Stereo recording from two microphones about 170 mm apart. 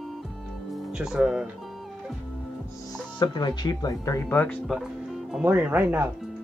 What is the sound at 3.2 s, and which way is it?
Speech, 25° left (ahead or behind).